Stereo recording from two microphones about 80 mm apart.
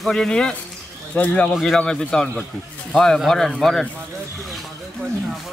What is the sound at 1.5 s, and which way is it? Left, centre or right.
Speech, centre.